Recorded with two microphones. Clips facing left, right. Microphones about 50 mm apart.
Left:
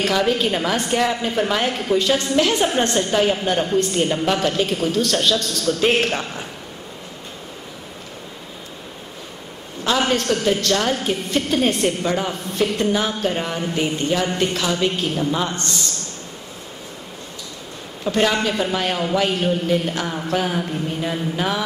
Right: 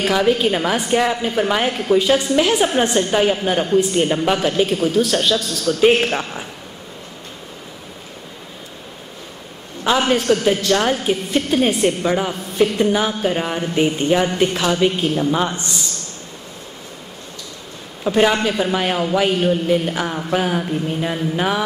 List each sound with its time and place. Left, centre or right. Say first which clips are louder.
0.0 s a woman's voice: right 3 dB; centre
9.8 s a woman's voice: right 3 dB; centre
18.0 s a woman's voice: right 3 dB; centre